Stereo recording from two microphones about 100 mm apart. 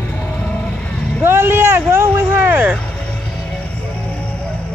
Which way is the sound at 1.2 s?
25° right (ahead or behind).